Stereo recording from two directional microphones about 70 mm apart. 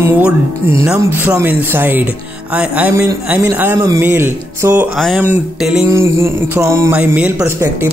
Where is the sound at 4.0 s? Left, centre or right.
Right.